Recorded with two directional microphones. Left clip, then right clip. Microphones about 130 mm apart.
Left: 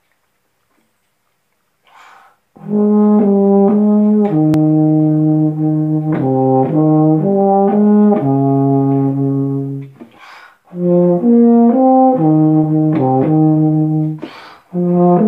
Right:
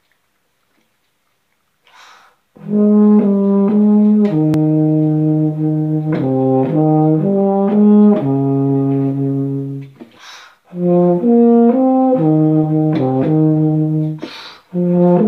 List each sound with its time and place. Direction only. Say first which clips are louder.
2.7 s brass instrument: even; 25° left (ahead or behind)
3.9 s brass instrument: left 1 dB; 20° left (ahead or behind)
4.6 s brass instrument: left 2 dB; 30° left (ahead or behind)
10.8 s brass instrument: left 1 dB; 30° left (ahead or behind)
11.3 s french horn: right 1 dB; 40° left (ahead or behind)
11.8 s brass instrument: left 3 dB; 25° left (ahead or behind)
12.4 s brass instrument: left 2 dB; 40° left (ahead or behind)
12.8 s brass instrument: left 2 dB; 25° left (ahead or behind)
14.3 s music: even; 25° left (ahead or behind)